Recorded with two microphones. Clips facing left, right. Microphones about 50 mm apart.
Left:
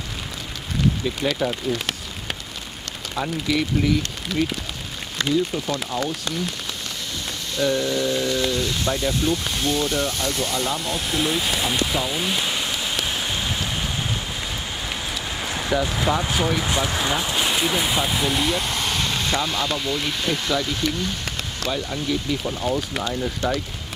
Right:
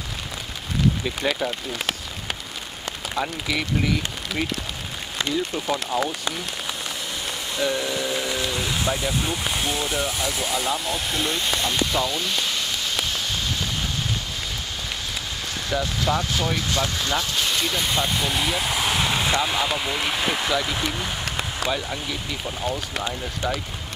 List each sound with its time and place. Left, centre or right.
1.0 s speech: centre
3.2 s speech: centre
5.5 s speech: centre
7.5 s speech: centre
13.0 s rain on surface: centre
15.4 s speech: centre